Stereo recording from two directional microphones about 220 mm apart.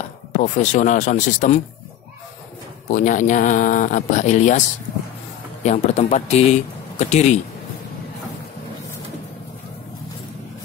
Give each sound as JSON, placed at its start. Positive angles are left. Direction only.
{"t": 0.3, "sound": "speech", "side_deg": 35}
{"t": 2.9, "sound": "speech", "side_deg": 35}